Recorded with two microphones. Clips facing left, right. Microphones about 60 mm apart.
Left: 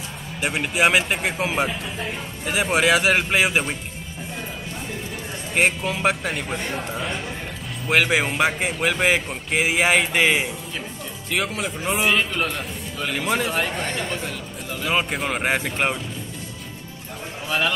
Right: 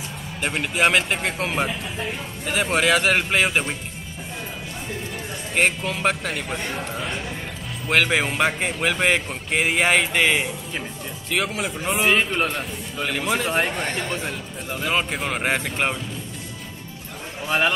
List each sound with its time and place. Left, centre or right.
0.4 s speech: centre
5.5 s speech: centre
12.1 s a man's voice: centre
13.1 s a man's voice: centre
14.9 s speech: centre
17.5 s a man's voice: centre